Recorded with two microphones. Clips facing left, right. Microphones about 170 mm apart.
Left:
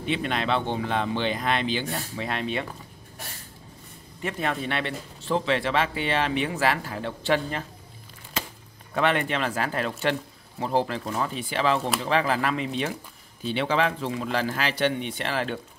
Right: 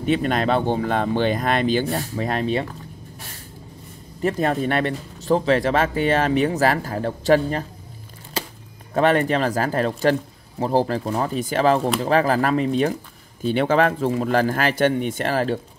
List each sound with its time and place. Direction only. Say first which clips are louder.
0.0 s speech: right 7 dB; 45° right (ahead or behind)
4.2 s speech: right 8 dB; 40° right (ahead or behind)
8.9 s speech: right 6 dB; 40° right (ahead or behind)